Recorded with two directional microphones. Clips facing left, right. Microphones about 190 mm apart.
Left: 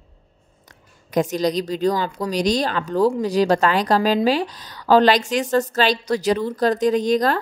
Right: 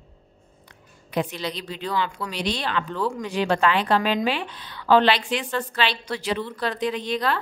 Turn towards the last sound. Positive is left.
turn(degrees=40)  # may be behind; listen again after turning